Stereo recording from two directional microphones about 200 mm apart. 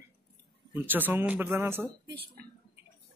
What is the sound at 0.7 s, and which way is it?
Speech, 10° right (ahead or behind).